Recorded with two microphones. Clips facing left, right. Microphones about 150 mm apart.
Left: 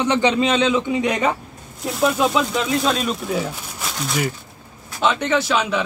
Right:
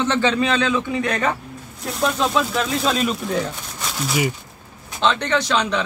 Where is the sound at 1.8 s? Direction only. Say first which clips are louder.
Left 3 dB; centre (ahead or behind).